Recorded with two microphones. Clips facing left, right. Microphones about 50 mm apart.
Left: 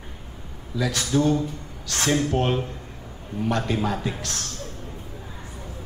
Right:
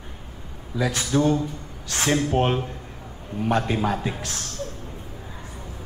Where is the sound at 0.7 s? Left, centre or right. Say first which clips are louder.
Right 1 dB; right.